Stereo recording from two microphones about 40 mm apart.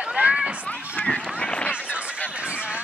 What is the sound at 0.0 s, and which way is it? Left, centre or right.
Run, right.